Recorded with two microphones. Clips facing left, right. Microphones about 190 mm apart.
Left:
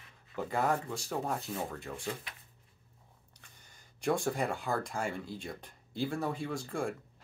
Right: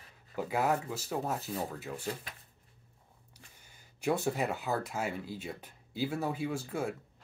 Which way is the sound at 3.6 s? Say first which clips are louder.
Even; 5° right (ahead or behind).